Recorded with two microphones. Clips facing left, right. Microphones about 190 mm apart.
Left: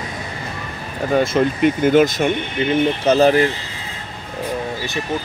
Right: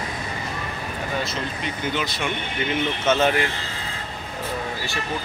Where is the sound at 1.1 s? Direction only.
50° left (ahead or behind).